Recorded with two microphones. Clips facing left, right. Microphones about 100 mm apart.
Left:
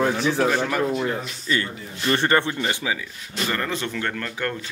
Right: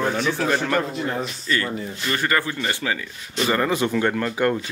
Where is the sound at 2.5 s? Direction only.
10° left (ahead or behind).